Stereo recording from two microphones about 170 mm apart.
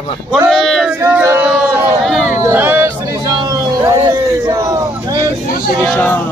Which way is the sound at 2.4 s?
10° right (ahead or behind).